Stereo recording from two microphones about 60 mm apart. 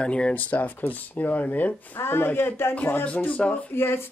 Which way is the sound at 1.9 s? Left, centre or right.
Left.